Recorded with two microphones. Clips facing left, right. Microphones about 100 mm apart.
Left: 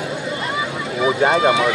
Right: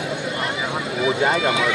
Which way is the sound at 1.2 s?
35° left (ahead or behind).